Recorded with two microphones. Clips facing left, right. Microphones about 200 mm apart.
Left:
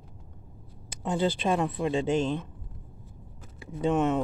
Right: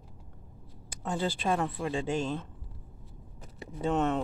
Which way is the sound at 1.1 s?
20° left (ahead or behind).